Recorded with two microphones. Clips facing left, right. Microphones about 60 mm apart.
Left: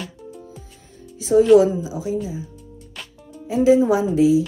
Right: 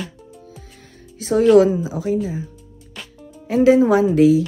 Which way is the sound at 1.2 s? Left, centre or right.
Right.